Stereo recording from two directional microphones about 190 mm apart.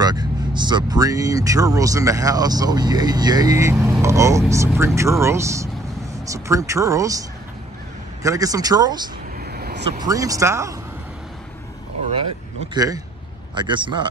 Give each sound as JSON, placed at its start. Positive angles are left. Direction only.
{"t": 0.0, "sound": "speech", "side_deg": -20}
{"t": 9.4, "sound": "vehicle", "side_deg": -55}
{"t": 10.0, "sound": "speech", "side_deg": -20}
{"t": 12.7, "sound": "speech", "side_deg": -20}